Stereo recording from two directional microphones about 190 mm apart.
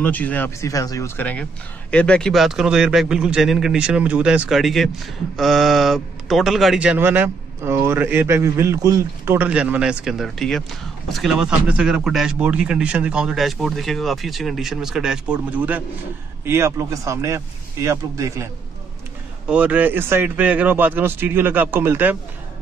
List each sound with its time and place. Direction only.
0.0 s speech: 10° left (ahead or behind); by 22.1 s 10° right (ahead or behind)